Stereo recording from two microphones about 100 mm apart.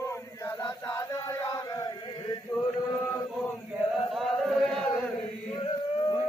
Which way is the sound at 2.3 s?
40° left (ahead or behind).